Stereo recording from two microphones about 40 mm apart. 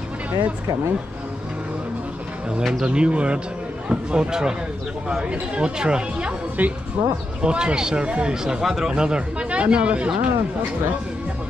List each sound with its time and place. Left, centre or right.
2.8 s speech: right
6.6 s speech: right
7.4 s speech: right
8.6 s speech: centre
8.9 s speech: right